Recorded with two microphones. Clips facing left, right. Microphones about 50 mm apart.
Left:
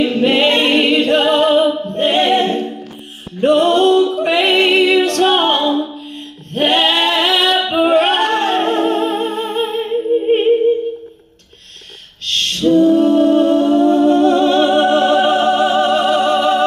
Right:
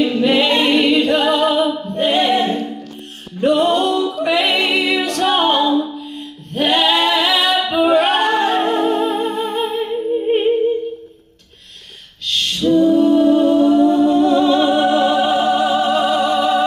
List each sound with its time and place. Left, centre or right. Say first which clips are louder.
0.1 s a capella: left 2 dB; left
3.3 s music: left 3 dB; left
12.3 s a capella: left 2 dB; left